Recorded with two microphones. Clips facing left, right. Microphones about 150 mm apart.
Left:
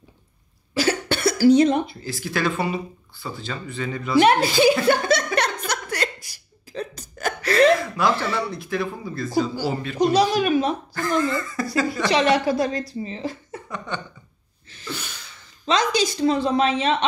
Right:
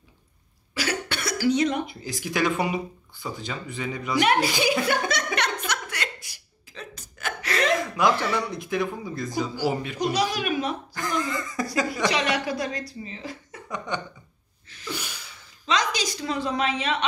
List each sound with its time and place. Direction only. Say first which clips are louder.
0.7 s cough: left 7 dB; 30° left (ahead or behind)
1.9 s speech: left 2 dB; 15° right (ahead or behind)
4.2 s a woman's voice: left 5 dB; 30° left (ahead or behind)
4.8 s chuckle: left 6 dB; 30° left (ahead or behind)
5.7 s a sound: left 5 dB; 40° left (ahead or behind)
7.7 s speech: left 2 dB; 15° right (ahead or behind)
9.9 s a woman's voice: left 7 dB; 25° left (ahead or behind)
11.0 s speech: left 6 dB; 15° right (ahead or behind)
12.1 s a woman's voice: left 7 dB; 30° left (ahead or behind)
13.7 s speech: right 1 dB; 15° right (ahead or behind)
14.9 s snort: left 1 dB; 10° right (ahead or behind)
15.6 s a woman's voice: left 5 dB; 30° left (ahead or behind)